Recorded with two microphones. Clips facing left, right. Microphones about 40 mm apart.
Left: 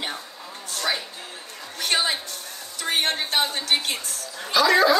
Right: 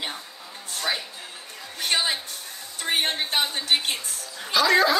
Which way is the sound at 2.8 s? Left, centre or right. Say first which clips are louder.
Even; right.